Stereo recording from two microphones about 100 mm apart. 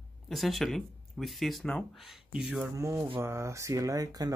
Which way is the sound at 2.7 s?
30° right (ahead or behind).